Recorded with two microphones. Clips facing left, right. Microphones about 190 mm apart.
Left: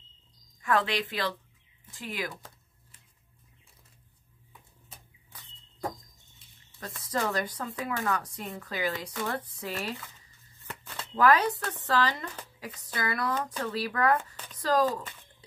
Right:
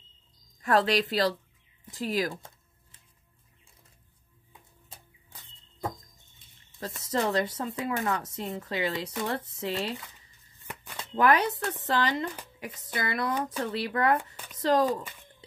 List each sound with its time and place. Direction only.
0.6 s a woman's voice: 40° right (ahead or behind)
6.8 s speech: 25° right (ahead or behind)
10.7 s a sound: 20° right (ahead or behind)
11.8 s speech: 25° right (ahead or behind)